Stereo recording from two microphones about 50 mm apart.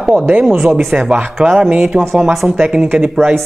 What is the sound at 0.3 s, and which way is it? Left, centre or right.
Speech, right.